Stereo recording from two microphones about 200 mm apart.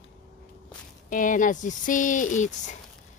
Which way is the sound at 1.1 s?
40° left (ahead or behind).